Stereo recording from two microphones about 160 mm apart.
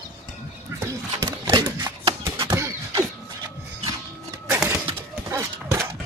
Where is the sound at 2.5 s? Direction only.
20° right (ahead or behind).